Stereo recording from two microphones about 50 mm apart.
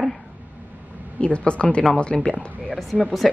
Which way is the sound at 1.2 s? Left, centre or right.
Left.